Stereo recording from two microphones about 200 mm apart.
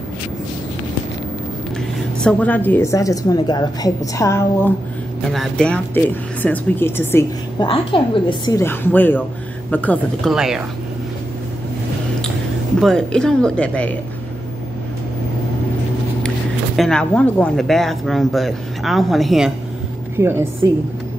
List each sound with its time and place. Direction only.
2.2 s a woman's voice: 10° left (ahead or behind)
5.3 s a woman's voice: 5° left (ahead or behind)
7.6 s a woman's voice: 25° left (ahead or behind); by 10.3 s 10° left (ahead or behind)
10.3 s speech: 5° right (ahead or behind)
12.8 s speech: 5° left (ahead or behind)
16.7 s speech: centre (ahead or behind)
20.2 s a woman's voice: 10° right (ahead or behind)